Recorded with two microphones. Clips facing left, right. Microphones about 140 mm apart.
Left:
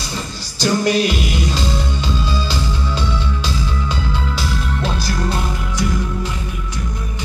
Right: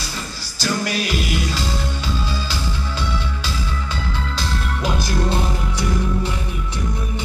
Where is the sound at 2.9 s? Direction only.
20° left (ahead or behind).